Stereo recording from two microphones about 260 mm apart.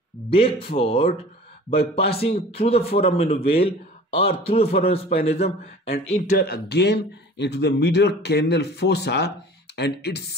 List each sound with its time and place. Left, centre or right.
0.3 s a man's voice: left